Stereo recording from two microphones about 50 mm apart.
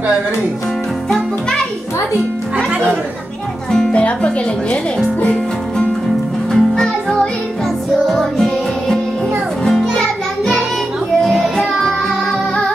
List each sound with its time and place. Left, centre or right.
3.9 s speech: left
6.5 s music: centre